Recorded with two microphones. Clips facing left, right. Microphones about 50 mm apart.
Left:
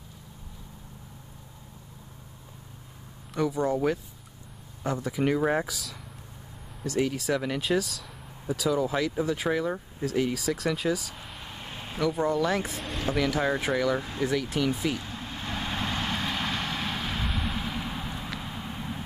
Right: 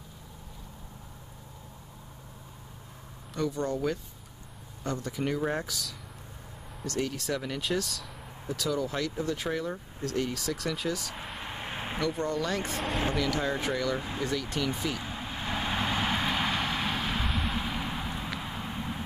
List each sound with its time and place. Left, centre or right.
3.3 s speech: centre
11.4 s vehicle: right
12.0 s speech: centre
15.0 s vehicle: centre